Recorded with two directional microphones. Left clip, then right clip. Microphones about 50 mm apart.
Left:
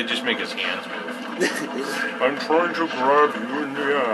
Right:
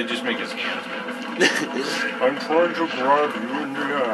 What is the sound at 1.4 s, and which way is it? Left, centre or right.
Speech, right.